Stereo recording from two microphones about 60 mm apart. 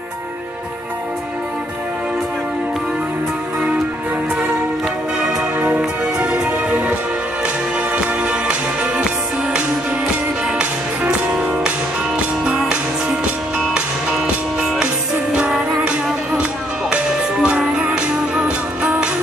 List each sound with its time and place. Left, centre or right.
5.6 s music: right
6.1 s music: centre
10.6 s music: centre
14.2 s music: centre